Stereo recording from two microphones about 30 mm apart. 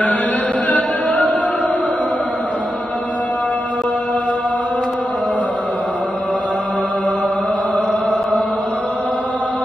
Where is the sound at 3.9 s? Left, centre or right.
Left.